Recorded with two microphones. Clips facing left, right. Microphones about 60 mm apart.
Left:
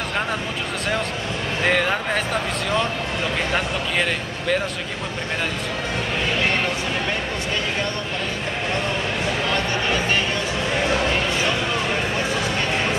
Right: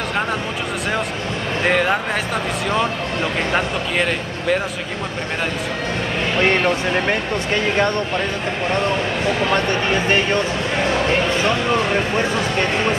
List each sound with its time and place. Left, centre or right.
1.6 s speech: centre
3.5 s speech: centre
10.0 s speech: right